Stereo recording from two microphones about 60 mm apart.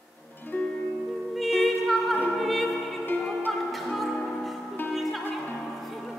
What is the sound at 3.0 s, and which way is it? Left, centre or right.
Music, left.